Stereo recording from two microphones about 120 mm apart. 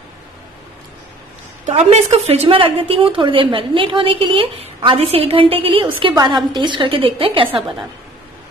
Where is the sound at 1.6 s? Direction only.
60° right (ahead or behind); by 7.7 s 45° right (ahead or behind).